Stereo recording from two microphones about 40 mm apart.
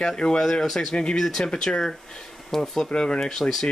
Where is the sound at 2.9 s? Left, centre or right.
Left.